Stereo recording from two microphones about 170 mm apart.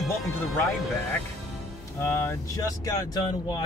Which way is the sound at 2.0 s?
15° left (ahead or behind).